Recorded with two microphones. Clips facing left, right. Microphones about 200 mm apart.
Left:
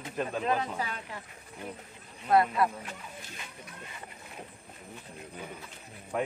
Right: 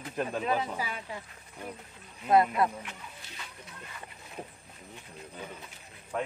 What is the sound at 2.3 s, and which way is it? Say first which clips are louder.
Speech: right 1 dB; 20° right (ahead or behind).